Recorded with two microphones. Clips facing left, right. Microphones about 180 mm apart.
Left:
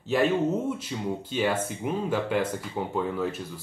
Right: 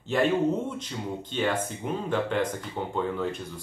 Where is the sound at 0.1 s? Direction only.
Centre (ahead or behind).